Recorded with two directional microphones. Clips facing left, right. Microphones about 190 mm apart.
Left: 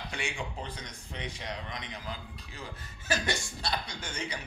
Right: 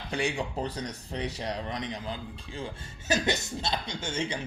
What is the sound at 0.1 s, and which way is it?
A man's voice, 35° right (ahead or behind).